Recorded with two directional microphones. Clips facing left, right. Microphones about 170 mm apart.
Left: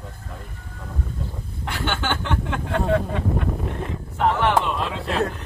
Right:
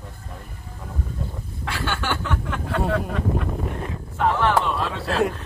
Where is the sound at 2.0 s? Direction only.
25° left (ahead or behind).